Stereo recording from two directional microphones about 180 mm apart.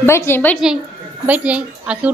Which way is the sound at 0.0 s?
15° left (ahead or behind).